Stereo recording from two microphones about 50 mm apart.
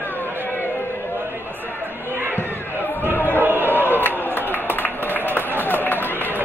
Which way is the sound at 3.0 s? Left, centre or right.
Right.